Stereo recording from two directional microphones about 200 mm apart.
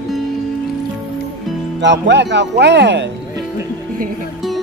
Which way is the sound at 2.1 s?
60° right (ahead or behind).